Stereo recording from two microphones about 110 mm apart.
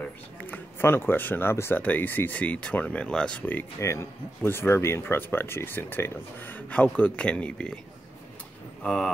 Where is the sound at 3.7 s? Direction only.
25° left (ahead or behind); by 7.7 s 10° left (ahead or behind).